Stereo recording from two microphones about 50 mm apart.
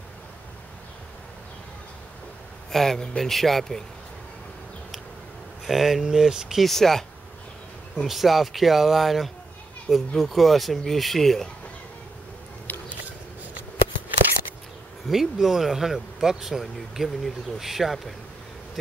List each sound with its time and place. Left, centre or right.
2.7 s speech: centre
5.7 s speech: centre
6.6 s speech: centre
12.7 s a sound: left
15.0 s speech: centre